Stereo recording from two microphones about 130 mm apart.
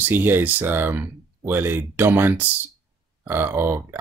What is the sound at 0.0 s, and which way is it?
Speech, 15° right (ahead or behind).